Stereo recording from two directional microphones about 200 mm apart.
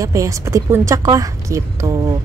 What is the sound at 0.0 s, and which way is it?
A woman's voice, 15° right (ahead or behind).